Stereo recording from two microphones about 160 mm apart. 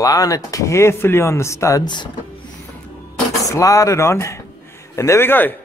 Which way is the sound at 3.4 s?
20° left (ahead or behind).